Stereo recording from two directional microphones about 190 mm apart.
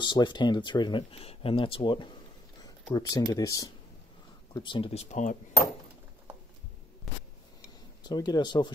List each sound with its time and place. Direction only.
0.0 s speech: 25° left (ahead or behind); by 5.4 s 40° left (ahead or behind)
8.0 s speech: 20° left (ahead or behind)